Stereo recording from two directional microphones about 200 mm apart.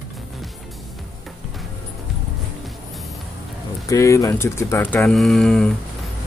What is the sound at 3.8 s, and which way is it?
Speech, 15° left (ahead or behind).